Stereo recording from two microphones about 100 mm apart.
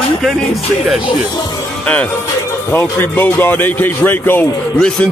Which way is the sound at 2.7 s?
20° left (ahead or behind).